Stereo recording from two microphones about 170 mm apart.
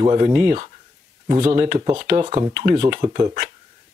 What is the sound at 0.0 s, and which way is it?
Speech, 35° right (ahead or behind).